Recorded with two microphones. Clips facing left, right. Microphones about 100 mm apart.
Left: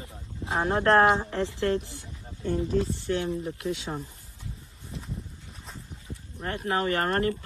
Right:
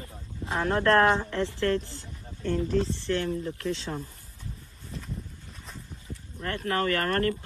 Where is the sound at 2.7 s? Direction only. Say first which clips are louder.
Even; 35° left (ahead or behind).